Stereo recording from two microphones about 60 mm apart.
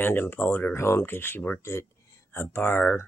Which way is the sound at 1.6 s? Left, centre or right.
Left.